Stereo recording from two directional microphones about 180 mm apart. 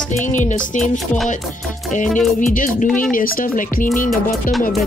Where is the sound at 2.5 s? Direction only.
50° left (ahead or behind).